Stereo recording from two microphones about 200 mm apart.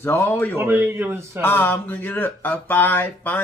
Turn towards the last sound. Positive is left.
turn(degrees=10)  # may be behind; listen again after turning